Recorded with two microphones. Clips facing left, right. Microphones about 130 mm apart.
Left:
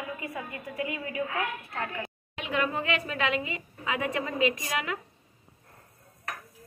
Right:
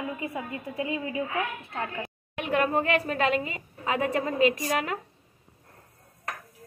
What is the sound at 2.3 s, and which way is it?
A woman's voice, 50° right (ahead or behind).